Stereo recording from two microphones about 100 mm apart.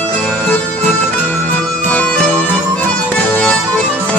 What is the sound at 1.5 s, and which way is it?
Bagpipes, 15° left (ahead or behind).